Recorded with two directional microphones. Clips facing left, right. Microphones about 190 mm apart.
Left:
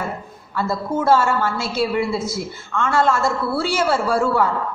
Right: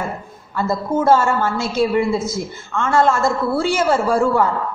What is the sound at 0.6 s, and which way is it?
A woman's voice, 45° right (ahead or behind).